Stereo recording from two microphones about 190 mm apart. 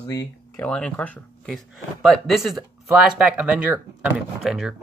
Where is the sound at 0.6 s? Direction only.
5° left (ahead or behind).